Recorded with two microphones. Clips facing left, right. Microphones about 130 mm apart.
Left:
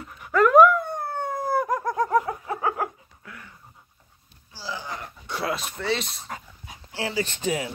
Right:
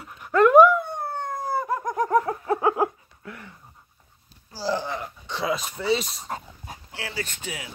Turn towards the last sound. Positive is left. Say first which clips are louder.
# left 8 dB
turn(degrees=35)  # may be behind; listen again after turning